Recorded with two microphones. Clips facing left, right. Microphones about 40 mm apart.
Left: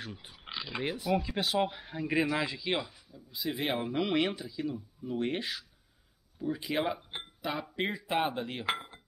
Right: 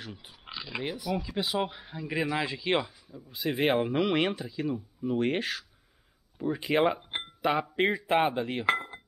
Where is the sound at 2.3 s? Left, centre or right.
Centre.